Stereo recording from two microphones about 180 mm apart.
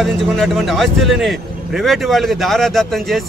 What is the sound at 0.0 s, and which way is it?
A man's voice, centre (ahead or behind).